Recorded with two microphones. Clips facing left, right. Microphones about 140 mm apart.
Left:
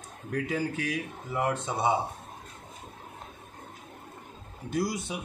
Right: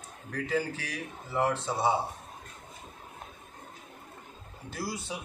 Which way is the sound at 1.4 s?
20° left (ahead or behind).